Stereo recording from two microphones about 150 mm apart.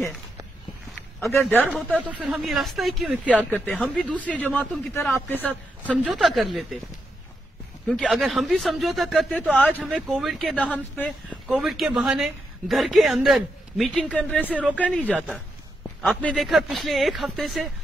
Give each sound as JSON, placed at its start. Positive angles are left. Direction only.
{"t": 1.3, "sound": "speech", "side_deg": 15}
{"t": 2.0, "sound": "a man's voice", "side_deg": -10}
{"t": 3.3, "sound": "speech", "side_deg": 10}
{"t": 5.4, "sound": "a man's voice", "side_deg": -10}
{"t": 8.0, "sound": "a man's voice", "side_deg": -5}
{"t": 9.6, "sound": "speech", "side_deg": 10}
{"t": 9.8, "sound": "a man's voice", "side_deg": -5}
{"t": 11.4, "sound": "a man's voice", "side_deg": -5}
{"t": 14.4, "sound": "speech", "side_deg": -10}
{"t": 16.1, "sound": "a man's voice", "side_deg": 5}